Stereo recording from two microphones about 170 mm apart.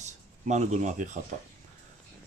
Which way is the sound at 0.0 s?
45° right (ahead or behind).